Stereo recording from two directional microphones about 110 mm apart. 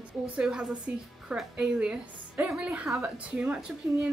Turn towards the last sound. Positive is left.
turn(degrees=-10)  # may be behind; listen again after turning